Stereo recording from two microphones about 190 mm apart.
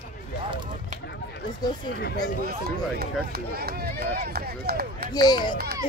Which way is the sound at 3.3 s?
55° right (ahead or behind).